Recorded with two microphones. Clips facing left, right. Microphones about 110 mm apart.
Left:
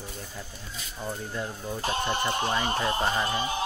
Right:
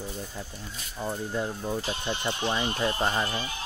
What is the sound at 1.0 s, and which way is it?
Speech, 15° right (ahead or behind).